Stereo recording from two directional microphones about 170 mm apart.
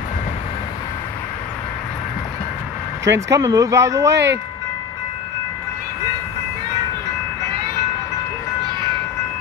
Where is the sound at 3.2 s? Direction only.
20° right (ahead or behind).